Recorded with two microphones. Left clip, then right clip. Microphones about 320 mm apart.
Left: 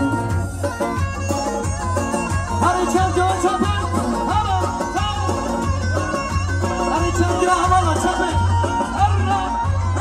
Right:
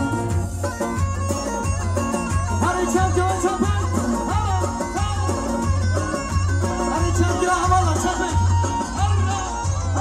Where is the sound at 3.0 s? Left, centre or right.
Left.